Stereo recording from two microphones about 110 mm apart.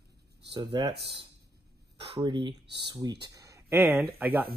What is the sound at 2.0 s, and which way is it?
Speech, 45° right (ahead or behind).